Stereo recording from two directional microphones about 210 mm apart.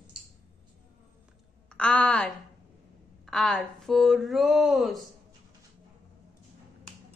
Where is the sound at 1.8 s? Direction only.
5° left (ahead or behind).